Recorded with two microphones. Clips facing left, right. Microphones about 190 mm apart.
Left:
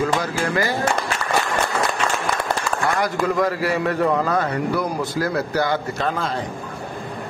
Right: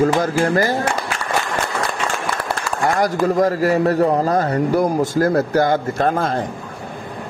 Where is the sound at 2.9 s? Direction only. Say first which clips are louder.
Right 5 dB; 40° right (ahead or behind).